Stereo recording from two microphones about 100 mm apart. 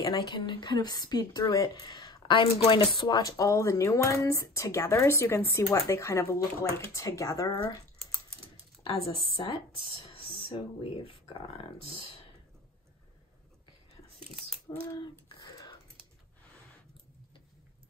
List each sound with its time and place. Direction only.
0.0 s speech: 45° left (ahead or behind)
2.3 s speech: 70° left (ahead or behind)
3.0 s speech: 40° left (ahead or behind)
8.8 s speech: 70° left (ahead or behind)
14.7 s speech: 40° left (ahead or behind)
15.4 s typing: 40° left (ahead or behind)